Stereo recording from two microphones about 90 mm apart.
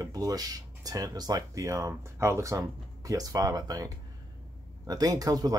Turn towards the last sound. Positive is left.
turn(degrees=-45)  # may be behind; listen again after turning